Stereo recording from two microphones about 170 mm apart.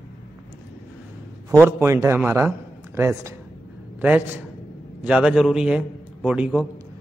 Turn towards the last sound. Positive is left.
turn(degrees=-5)  # may be behind; listen again after turning